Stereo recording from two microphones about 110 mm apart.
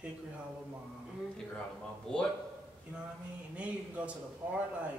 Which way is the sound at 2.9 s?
10° right (ahead or behind).